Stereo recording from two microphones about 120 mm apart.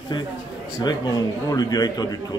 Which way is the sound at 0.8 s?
35° left (ahead or behind).